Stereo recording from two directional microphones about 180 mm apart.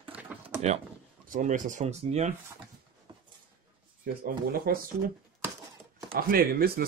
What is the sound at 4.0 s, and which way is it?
Speech, 55° right (ahead or behind).